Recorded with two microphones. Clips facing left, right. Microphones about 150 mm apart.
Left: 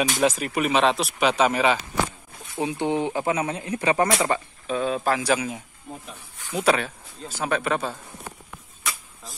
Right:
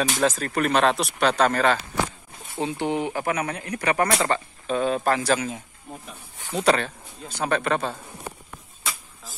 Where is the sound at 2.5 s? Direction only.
20° left (ahead or behind).